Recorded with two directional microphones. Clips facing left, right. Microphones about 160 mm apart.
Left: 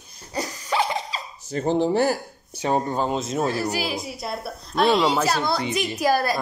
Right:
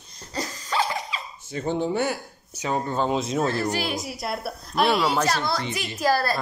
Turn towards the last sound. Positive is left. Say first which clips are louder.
# left 2 dB
turn(degrees=15)  # may be behind; listen again after turning